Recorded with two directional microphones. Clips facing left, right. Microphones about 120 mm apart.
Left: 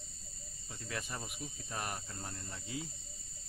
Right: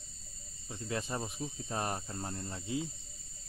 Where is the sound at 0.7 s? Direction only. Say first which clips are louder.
Right 6 dB; 25° right (ahead or behind).